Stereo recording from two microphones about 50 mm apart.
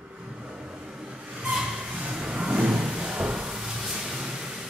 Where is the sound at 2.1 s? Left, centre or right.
Centre.